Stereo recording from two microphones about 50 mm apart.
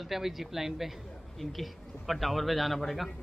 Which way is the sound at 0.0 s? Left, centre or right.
Centre.